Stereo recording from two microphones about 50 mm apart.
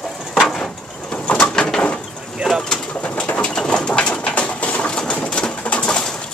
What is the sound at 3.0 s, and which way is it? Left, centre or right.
Bird, left.